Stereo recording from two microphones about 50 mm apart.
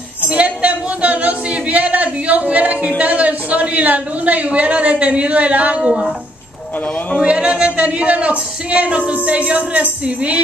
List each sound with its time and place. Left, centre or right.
0.3 s music: right
5.8 s speech: centre
7.2 s music: right